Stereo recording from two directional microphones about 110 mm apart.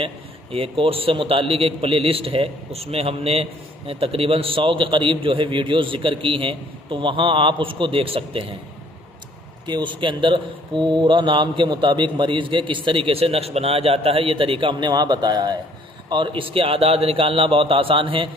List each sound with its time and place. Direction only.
0.0 s a man's voice: 55° right (ahead or behind)
9.7 s a man's voice: 45° right (ahead or behind)